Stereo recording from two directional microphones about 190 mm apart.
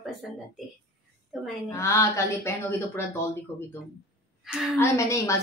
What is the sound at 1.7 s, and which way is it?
A woman's voice, 15° left (ahead or behind).